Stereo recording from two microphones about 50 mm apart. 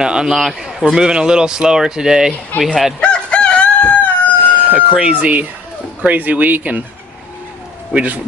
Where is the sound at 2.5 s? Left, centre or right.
Left.